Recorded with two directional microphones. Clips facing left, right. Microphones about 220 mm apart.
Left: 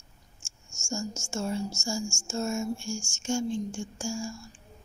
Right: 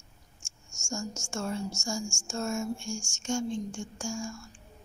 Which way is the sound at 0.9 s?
5° left (ahead or behind).